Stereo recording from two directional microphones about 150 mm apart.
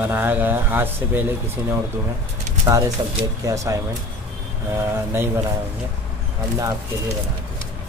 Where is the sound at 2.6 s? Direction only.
20° right (ahead or behind).